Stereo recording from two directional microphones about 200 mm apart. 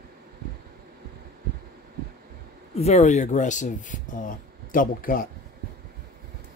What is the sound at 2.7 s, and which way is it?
Speech, 30° left (ahead or behind).